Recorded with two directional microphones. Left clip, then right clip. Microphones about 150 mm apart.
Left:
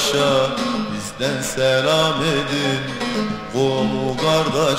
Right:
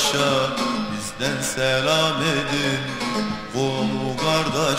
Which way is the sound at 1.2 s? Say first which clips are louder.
Left 4 dB; 40° right (ahead or behind).